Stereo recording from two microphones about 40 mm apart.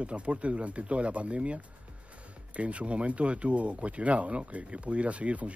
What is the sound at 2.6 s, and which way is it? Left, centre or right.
Speech, right.